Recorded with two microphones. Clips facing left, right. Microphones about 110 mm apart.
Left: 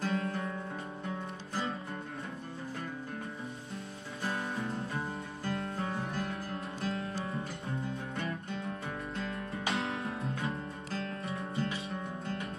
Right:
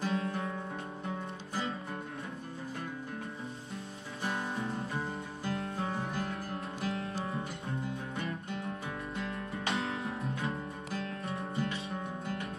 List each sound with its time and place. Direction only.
0.0 s music: 25° right (ahead or behind)
4.3 s music: centre (ahead or behind)
8.2 s music: centre (ahead or behind)